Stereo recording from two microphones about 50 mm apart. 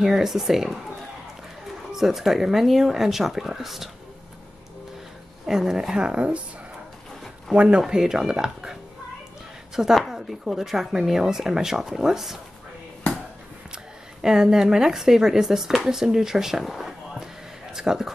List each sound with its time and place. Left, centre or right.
0.0 s speech: centre
1.9 s speech: centre
5.5 s speech: centre
7.5 s speech: right
7.8 s speech: centre
9.8 s speech: centre
14.2 s speech: centre